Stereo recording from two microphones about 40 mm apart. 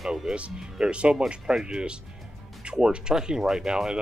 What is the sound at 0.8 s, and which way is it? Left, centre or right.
Speech, right.